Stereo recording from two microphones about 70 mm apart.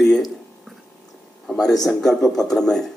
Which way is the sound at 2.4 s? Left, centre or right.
Centre.